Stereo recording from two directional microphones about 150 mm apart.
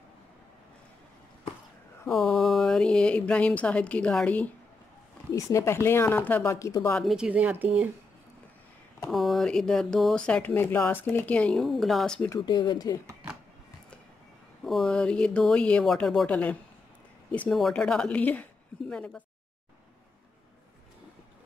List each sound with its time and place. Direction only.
2.0 s speech: centre (ahead or behind)
5.3 s speech: 20° left (ahead or behind)
7.0 s a woman's voice: 5° right (ahead or behind)
9.1 s speech: centre (ahead or behind)
12.4 s speech: 30° left (ahead or behind)
14.6 s speech: centre (ahead or behind)